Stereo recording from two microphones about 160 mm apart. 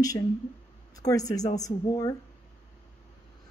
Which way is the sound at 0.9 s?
20° left (ahead or behind).